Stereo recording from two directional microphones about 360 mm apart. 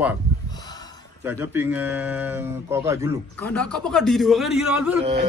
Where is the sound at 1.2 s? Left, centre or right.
Centre.